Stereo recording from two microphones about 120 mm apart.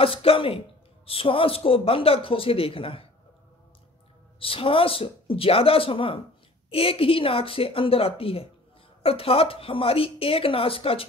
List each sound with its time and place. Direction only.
0.0 s a woman's voice: 50° left (ahead or behind)
4.4 s a woman's voice: 50° left (ahead or behind)